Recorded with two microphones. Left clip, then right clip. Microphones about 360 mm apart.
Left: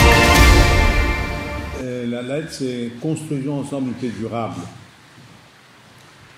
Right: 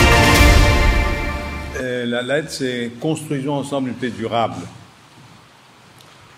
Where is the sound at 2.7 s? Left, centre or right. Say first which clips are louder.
Right 3 dB; right.